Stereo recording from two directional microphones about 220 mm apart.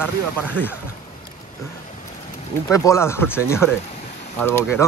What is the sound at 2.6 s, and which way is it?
Speech, 15° left (ahead or behind).